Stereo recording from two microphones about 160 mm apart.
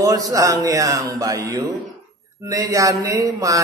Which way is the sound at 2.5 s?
20° right (ahead or behind).